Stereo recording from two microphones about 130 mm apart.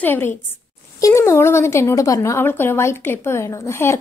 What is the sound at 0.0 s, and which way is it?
A woman's voice, 15° left (ahead or behind).